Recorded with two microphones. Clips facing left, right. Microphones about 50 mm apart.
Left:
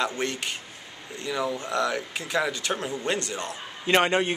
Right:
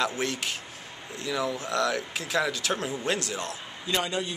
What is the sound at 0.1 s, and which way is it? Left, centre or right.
Speech, centre.